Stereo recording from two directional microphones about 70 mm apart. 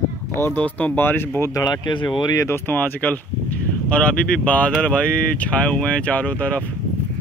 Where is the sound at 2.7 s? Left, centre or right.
Left.